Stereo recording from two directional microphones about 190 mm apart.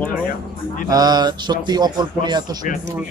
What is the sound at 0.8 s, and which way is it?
Speech, 20° right (ahead or behind).